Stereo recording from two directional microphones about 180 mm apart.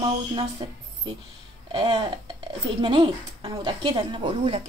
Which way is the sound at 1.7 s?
25° right (ahead or behind).